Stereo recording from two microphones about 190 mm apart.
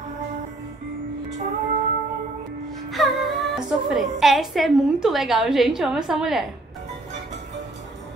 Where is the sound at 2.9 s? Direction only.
Centre (ahead or behind).